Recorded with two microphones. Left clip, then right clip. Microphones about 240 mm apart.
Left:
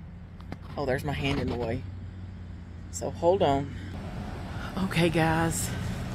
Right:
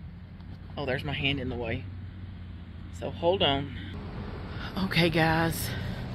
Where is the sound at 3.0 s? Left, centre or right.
Centre.